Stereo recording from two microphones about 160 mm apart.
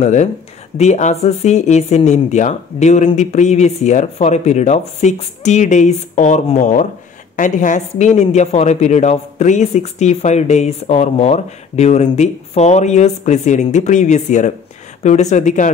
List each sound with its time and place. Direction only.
0.0 s a woman's voice: 45° left (ahead or behind)